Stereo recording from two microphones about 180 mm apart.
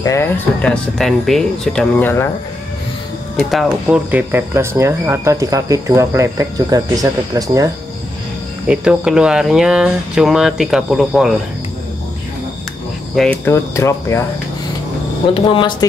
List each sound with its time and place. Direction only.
0.0 s speech: 15° left (ahead or behind)
0.6 s speech: 5° left (ahead or behind)
3.3 s speech: centre (ahead or behind); by 7.7 s 20° right (ahead or behind)
8.6 s speech: 5° right (ahead or behind)
13.1 s speech: centre (ahead or behind)
13.5 s speech: 15° left (ahead or behind)
15.3 s speech: 25° left (ahead or behind)